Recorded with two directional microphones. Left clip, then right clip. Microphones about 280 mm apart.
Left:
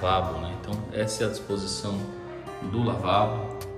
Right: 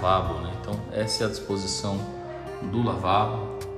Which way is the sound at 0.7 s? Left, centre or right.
Centre.